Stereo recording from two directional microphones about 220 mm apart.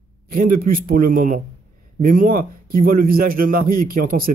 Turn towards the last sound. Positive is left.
turn(degrees=-40)  # may be behind; listen again after turning